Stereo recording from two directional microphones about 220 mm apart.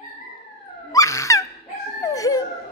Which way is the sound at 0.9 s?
15° left (ahead or behind).